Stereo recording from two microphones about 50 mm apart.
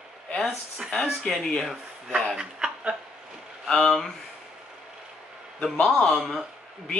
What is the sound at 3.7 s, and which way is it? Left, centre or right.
Speech, centre.